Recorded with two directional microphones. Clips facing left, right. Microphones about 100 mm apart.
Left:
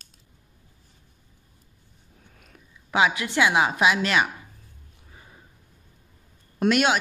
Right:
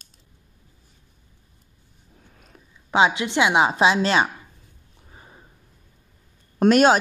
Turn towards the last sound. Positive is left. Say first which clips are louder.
# right 6 dB
turn(degrees=-40)  # may be behind; listen again after turning